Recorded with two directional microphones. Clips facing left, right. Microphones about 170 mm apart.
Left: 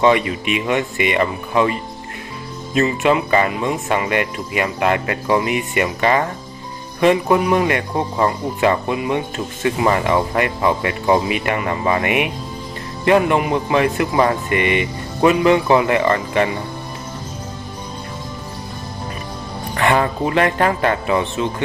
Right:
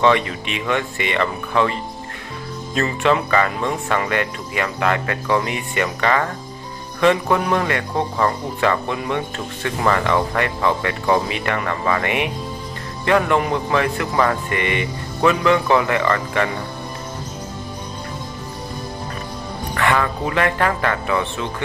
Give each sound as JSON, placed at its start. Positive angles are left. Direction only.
{"t": 0.0, "sound": "speech", "side_deg": 15}
{"t": 19.7, "sound": "speech", "side_deg": 25}